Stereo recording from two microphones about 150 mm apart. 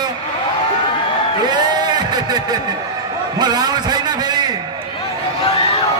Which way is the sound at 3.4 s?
30° right (ahead or behind).